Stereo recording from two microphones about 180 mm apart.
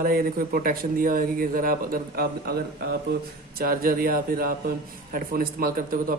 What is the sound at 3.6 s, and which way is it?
A man's voice, 55° right (ahead or behind).